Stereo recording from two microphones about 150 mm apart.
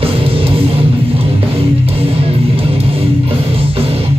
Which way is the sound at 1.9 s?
40° right (ahead or behind).